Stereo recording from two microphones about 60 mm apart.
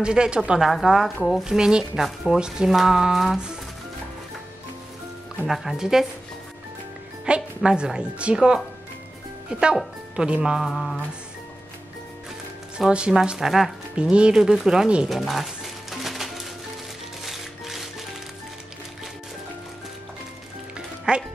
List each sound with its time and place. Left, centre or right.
0.0 s speech: centre
0.6 s speech: centre
5.5 s speech: centre
7.2 s speech: centre
10.7 s speech: centre
12.7 s speech: centre
13.9 s speech: centre
15.0 s music: centre
20.7 s music: centre